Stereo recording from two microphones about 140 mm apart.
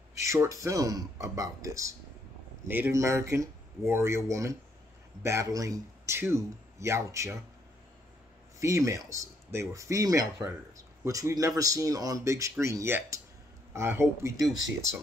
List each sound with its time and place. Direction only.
0.2 s speech: 20° right (ahead or behind)
8.5 s speech: 20° right (ahead or behind)